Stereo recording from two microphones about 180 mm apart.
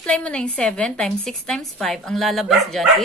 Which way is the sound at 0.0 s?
5° left (ahead or behind).